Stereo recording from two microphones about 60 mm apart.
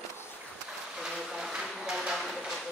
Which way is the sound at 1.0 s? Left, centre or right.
Centre.